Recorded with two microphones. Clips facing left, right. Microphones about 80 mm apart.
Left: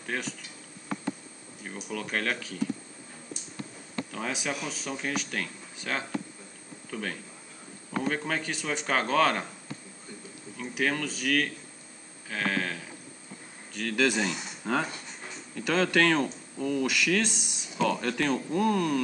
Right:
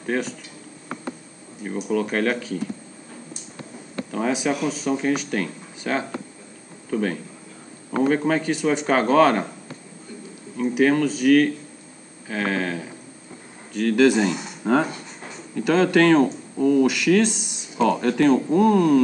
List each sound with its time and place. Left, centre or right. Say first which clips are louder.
0.0 s speech: right 9 dB; centre
1.6 s speech: right 12 dB; centre
4.1 s a man's voice: right 11 dB; centre
10.6 s speech: right 11 dB; centre
18.0 s speech: right 10 dB; centre